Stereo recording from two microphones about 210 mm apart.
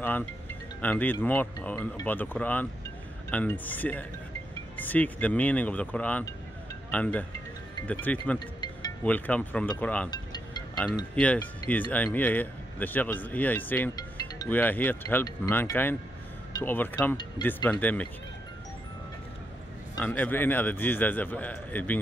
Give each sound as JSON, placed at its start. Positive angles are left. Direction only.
{"t": 0.7, "sound": "speech", "side_deg": 10}
{"t": 10.1, "sound": "music", "side_deg": 20}
{"t": 11.1, "sound": "speech", "side_deg": 5}
{"t": 20.0, "sound": "speech", "side_deg": 5}